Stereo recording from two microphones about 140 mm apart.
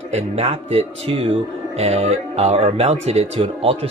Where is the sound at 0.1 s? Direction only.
50° right (ahead or behind).